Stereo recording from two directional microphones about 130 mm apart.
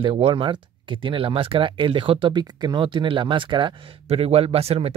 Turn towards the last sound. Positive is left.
turn(degrees=-50)  # may be behind; listen again after turning